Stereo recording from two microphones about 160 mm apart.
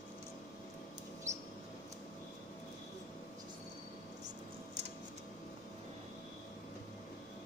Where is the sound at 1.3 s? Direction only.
45° right (ahead or behind).